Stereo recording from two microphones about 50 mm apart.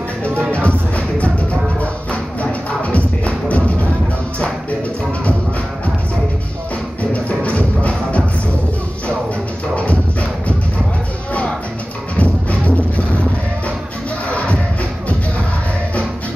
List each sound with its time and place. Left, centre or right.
0.5 s music: left
2.4 s music: left
7.0 s music: left
12.2 s music: left
14.3 s music: left